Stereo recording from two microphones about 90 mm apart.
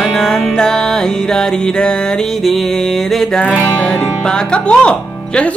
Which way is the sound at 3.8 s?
15° left (ahead or behind).